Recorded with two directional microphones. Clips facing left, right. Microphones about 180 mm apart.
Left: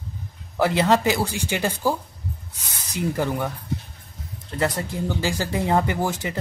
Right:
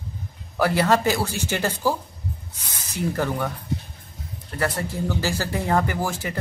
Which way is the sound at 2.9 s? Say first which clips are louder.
Left 1 dB; 15° left (ahead or behind).